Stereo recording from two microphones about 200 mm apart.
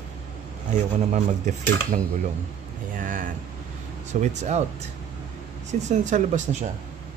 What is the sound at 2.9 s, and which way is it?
Vehicle, 40° right (ahead or behind).